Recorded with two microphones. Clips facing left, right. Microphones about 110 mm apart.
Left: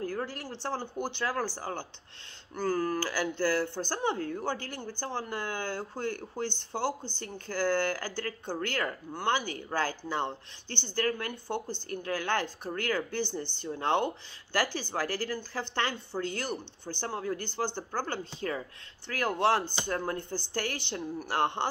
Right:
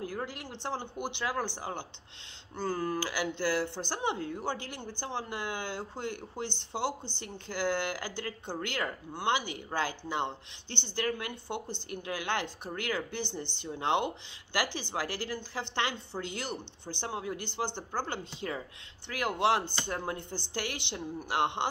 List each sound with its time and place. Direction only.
0.1 s speech: 15° right (ahead or behind)
19.6 s speech: 15° left (ahead or behind)
19.9 s speech: 20° right (ahead or behind)